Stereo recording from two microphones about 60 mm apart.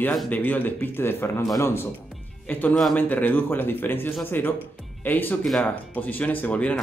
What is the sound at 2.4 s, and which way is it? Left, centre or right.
Speech, left.